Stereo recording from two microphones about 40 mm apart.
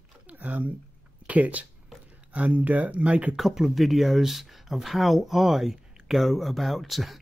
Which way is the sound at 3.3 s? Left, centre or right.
Centre.